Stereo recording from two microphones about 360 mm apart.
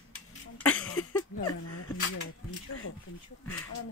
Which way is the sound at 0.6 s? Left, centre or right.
Centre.